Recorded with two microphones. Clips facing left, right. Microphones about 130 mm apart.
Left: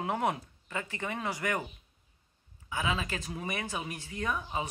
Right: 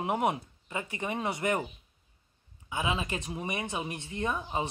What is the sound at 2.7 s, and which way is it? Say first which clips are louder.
Speech: right 1 dB; 20° right (ahead or behind).